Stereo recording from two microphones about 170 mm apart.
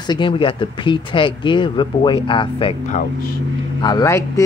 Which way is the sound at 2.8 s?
50° left (ahead or behind).